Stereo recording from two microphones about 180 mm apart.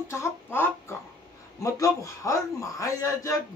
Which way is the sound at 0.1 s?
15° left (ahead or behind).